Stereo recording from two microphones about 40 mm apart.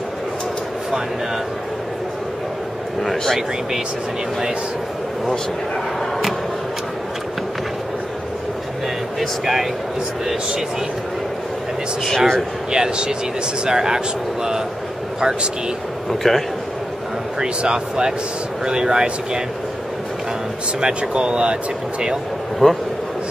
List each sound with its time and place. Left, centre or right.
3.0 s a man's voice: centre
9.4 s a man's voice: centre
12.2 s speech: centre
12.7 s speech: centre
16.1 s a man's voice: centre
17.4 s speech: centre
20.8 s speech: right
22.6 s speech: centre